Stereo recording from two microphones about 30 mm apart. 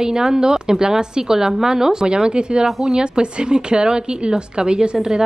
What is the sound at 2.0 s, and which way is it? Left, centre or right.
A woman's voice, right.